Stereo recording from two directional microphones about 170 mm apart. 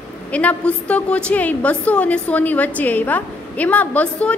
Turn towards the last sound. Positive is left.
turn(degrees=5)  # may be behind; listen again after turning